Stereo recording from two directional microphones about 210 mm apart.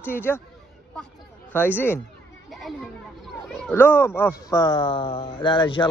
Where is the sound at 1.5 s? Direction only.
10° left (ahead or behind).